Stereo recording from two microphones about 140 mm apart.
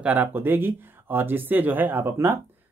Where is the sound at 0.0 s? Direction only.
10° right (ahead or behind).